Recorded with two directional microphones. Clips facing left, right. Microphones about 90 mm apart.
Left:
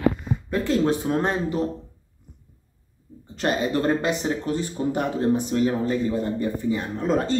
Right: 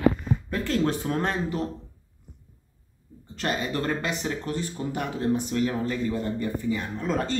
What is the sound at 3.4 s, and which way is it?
Speech, 25° left (ahead or behind).